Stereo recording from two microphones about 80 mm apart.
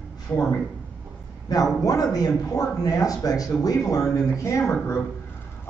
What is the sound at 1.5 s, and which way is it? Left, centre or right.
Speech, left.